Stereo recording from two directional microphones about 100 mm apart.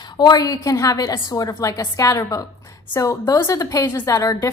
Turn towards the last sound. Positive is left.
turn(degrees=35)  # may be behind; listen again after turning